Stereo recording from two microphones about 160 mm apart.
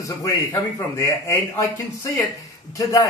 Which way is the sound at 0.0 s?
25° left (ahead or behind).